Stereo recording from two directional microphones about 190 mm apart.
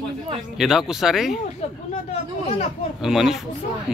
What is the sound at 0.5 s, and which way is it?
Speech, 5° right (ahead or behind).